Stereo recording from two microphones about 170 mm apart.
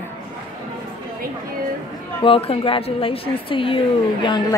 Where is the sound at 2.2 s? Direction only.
35° left (ahead or behind).